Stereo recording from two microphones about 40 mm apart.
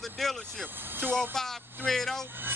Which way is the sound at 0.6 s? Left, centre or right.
Right.